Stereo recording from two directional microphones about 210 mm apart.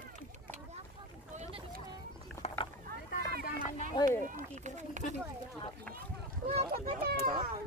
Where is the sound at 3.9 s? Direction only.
20° left (ahead or behind).